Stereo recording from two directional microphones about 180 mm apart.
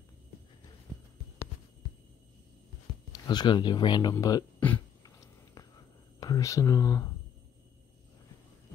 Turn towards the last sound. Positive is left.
turn(degrees=20)  # may be behind; listen again after turning